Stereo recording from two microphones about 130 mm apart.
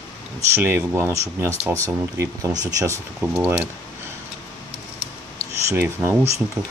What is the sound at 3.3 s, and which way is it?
Speech, 10° right (ahead or behind).